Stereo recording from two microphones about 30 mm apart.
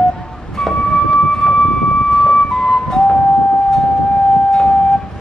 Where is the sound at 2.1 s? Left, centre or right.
Left.